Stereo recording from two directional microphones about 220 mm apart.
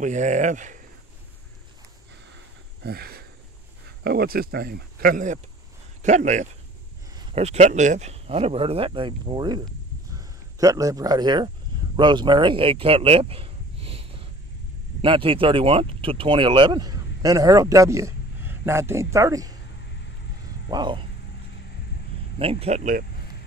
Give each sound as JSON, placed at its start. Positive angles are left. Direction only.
{"t": 0.0, "sound": "speech", "side_deg": -35}
{"t": 2.8, "sound": "speech", "side_deg": -45}
{"t": 20.7, "sound": "speech", "side_deg": -20}
{"t": 22.4, "sound": "speech", "side_deg": -25}